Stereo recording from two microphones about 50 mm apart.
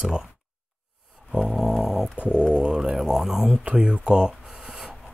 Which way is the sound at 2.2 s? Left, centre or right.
Right.